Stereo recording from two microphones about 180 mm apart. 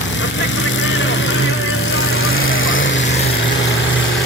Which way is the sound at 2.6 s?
90° left.